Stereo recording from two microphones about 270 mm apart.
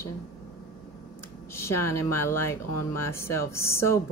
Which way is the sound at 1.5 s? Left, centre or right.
Centre.